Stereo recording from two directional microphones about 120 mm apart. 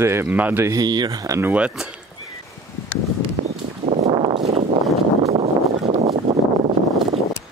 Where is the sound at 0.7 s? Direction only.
35° right (ahead or behind).